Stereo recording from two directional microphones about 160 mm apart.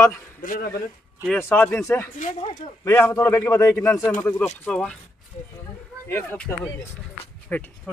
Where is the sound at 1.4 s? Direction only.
10° left (ahead or behind).